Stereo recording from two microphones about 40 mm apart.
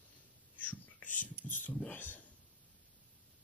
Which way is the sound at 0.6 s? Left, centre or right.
Left.